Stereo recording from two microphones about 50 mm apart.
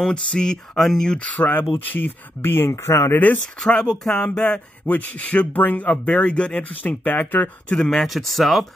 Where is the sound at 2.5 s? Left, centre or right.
Left.